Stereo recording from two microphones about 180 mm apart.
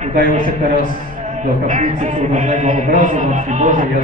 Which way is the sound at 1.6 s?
45° right (ahead or behind).